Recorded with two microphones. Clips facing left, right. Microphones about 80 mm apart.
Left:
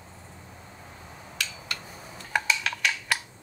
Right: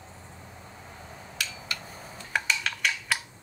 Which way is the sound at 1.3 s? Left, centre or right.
Centre.